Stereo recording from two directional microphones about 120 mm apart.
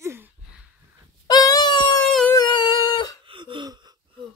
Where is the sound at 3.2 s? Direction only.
45° right (ahead or behind).